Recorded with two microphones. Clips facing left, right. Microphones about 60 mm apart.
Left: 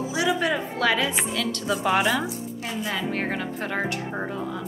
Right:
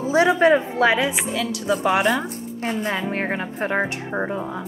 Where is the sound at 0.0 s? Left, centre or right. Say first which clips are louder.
Right 8 dB; right.